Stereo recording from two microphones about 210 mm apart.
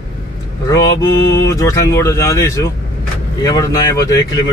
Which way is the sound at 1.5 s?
15° left (ahead or behind).